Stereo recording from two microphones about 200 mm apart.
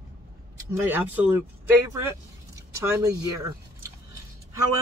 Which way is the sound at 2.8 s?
15° right (ahead or behind).